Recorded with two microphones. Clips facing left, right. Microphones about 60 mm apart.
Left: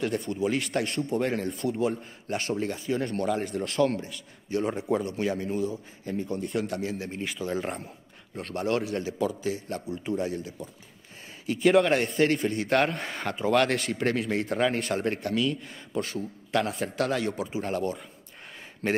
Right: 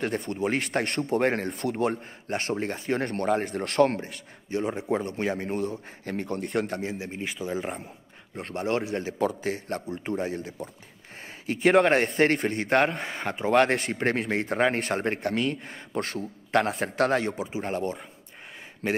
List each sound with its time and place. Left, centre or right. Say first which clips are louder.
0.0 s a man's voice: even; right
2.2 s a man's voice: even; right
4.5 s a man's voice: left 1 dB; right
5.1 s speech: even; right
7.0 s speech: even; centre
8.5 s a man's voice: even; right
9.2 s a man's voice: right 3 dB; right
13.0 s a man's voice: even; right
17.4 s a man's voice: even; right
18.8 s speech: left 1 dB; centre